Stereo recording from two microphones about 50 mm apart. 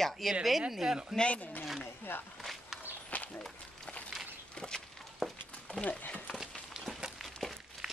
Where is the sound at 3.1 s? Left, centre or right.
Left.